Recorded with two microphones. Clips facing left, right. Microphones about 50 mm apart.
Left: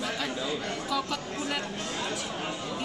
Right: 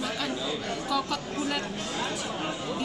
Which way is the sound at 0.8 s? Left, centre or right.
Centre.